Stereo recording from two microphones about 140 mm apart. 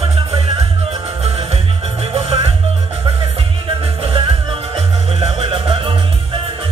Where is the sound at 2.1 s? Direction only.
45° right (ahead or behind).